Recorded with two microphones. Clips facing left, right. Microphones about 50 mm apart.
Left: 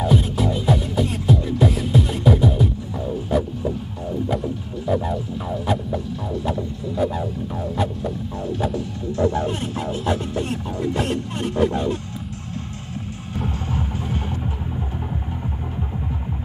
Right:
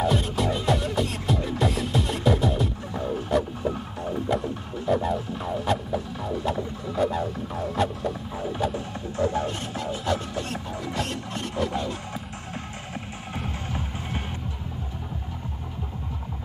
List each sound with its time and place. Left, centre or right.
0.0 s music: centre
9.5 s music: centre
11.5 s a sound: left